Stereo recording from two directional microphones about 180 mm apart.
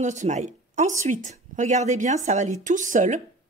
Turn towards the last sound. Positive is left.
turn(degrees=-45)  # may be behind; listen again after turning